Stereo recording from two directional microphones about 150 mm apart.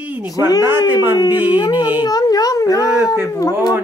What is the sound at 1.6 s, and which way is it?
Speech, 30° left (ahead or behind).